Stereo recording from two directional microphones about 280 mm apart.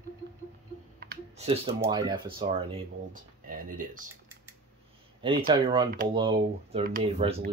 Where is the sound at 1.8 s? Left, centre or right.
Centre.